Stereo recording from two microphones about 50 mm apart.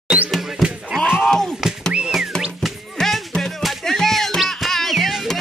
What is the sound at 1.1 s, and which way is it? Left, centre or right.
Slap, centre.